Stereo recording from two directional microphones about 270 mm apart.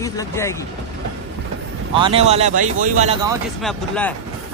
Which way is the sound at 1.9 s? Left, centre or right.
Centre.